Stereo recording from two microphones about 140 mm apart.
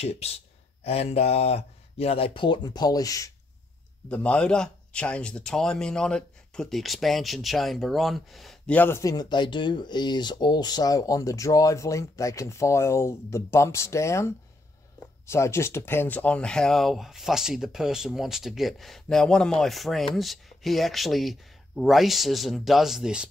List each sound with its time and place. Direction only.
0.0 s speech: 45° left (ahead or behind); by 3.3 s 25° left (ahead or behind)
4.1 s speech: 10° left (ahead or behind)
8.7 s speech: 15° left (ahead or behind)
9.1 s speech: 30° left (ahead or behind); by 23.2 s 5° right (ahead or behind)